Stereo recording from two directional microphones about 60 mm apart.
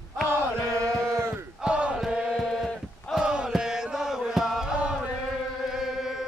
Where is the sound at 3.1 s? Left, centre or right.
Centre.